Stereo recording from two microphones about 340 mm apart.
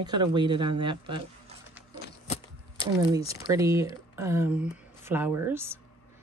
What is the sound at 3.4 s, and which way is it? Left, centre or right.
Speech, centre.